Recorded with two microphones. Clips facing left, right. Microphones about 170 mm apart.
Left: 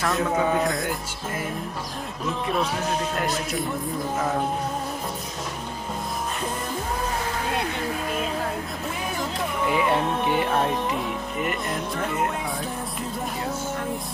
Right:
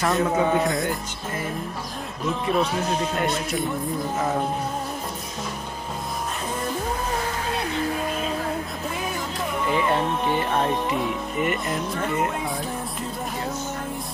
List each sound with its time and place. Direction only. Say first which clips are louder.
0.0 s music: right 2 dB; centre (ahead or behind)
9.7 s speech: even; 10° left (ahead or behind)
11.4 s music: right 2 dB; centre (ahead or behind)